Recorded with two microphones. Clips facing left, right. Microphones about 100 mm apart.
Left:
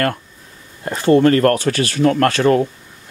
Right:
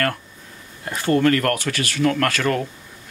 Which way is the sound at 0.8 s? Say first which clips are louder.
Left 5 dB; 30° left (ahead or behind).